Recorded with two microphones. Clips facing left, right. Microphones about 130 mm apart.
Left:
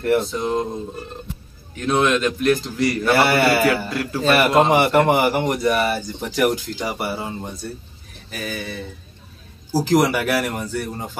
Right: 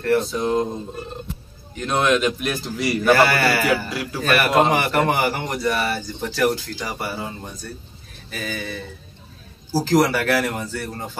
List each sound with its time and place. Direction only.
0.2 s a man's voice: centre (ahead or behind)
1.8 s a man's voice: centre (ahead or behind)
3.1 s a man's voice: 25° left (ahead or behind)
3.7 s a man's voice: 5° right (ahead or behind)
4.2 s a man's voice: 25° left (ahead or behind)
8.3 s a man's voice: 5° left (ahead or behind)
9.7 s speech: 15° left (ahead or behind)